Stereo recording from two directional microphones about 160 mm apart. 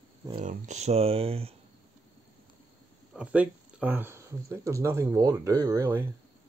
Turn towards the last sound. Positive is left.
turn(degrees=-15)  # may be behind; listen again after turning